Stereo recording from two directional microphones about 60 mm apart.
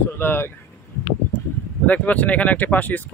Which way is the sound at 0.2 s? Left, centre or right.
Left.